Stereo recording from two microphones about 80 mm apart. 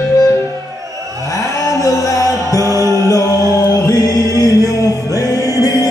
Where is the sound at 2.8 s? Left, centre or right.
Left.